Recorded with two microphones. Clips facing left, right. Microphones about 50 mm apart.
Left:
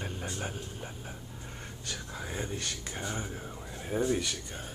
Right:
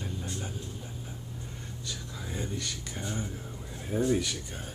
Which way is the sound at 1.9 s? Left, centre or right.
Left.